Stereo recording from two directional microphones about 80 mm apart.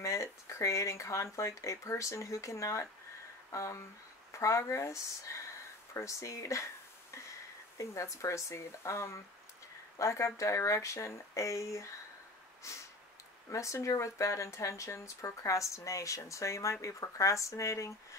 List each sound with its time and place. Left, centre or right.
0.0 s speech: left